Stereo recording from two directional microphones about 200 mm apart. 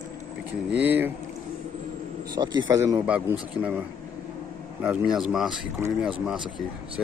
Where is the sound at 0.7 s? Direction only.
10° right (ahead or behind).